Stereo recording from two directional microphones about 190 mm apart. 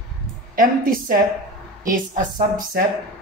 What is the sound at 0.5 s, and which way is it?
Speech, 50° right (ahead or behind).